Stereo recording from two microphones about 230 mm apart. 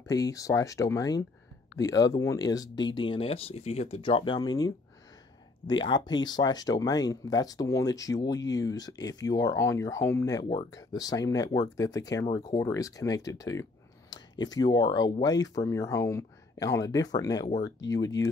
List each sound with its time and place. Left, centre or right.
0.1 s speech: centre